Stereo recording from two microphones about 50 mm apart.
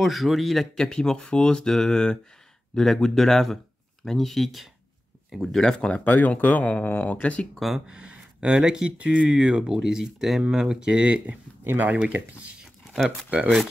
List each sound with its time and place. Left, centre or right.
0.0 s a man's voice: centre
0.8 s a man's voice: centre
5.6 s speech: centre
5.9 s speech: left
7.2 s speech: left
7.8 s speech: centre
11.6 s speech: right